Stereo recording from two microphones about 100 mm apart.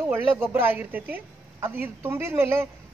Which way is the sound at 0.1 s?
25° right (ahead or behind).